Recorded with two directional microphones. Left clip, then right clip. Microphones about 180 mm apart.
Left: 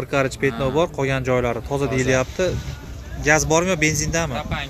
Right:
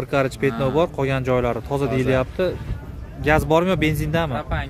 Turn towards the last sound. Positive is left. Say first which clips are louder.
# even
turn(degrees=-45)  # may be behind; listen again after turning